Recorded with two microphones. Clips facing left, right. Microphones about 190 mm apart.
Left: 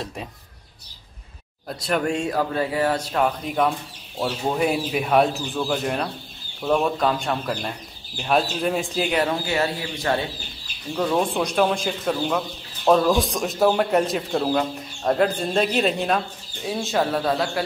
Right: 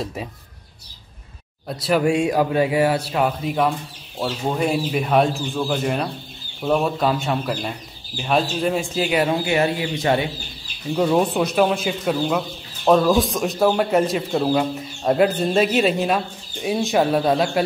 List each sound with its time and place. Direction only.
0.0 s speech: 5° right (ahead or behind)
1.7 s speech: centre (ahead or behind)
9.3 s speech: 20° right (ahead or behind); by 16.2 s 5° right (ahead or behind)
16.6 s speech: 15° right (ahead or behind)